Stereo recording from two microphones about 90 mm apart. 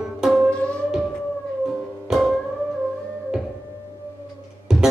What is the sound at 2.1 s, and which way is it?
Music, centre (ahead or behind).